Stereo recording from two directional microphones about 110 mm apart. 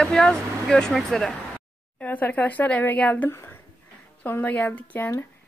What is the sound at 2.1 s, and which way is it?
Speech, 15° left (ahead or behind).